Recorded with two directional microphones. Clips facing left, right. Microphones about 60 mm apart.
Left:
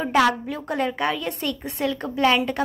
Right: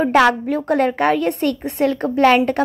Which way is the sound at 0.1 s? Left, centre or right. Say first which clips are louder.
Right 2 dB; right.